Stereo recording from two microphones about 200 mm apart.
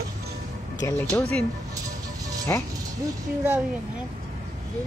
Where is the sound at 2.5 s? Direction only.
10° left (ahead or behind).